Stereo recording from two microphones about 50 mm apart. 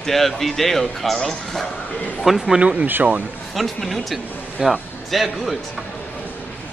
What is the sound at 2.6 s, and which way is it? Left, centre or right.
Speech, right.